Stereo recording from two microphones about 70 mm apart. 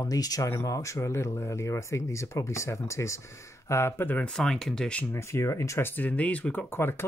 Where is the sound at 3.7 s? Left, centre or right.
Left.